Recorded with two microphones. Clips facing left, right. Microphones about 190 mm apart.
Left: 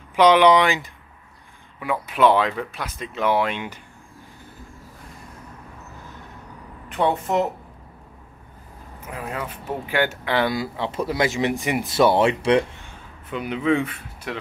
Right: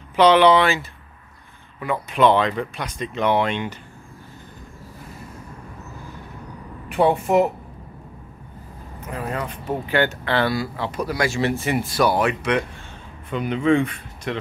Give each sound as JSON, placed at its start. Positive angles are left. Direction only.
{"t": 0.1, "sound": "speech", "side_deg": 10}
{"t": 6.9, "sound": "a woman's voice", "side_deg": -10}
{"t": 9.0, "sound": "speech", "side_deg": 5}
{"t": 13.3, "sound": "speech", "side_deg": 5}